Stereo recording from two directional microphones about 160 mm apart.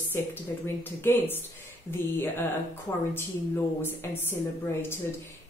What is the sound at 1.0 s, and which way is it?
Speech, 15° left (ahead or behind).